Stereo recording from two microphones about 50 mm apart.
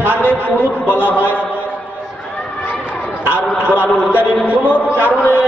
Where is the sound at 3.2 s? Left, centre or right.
Right.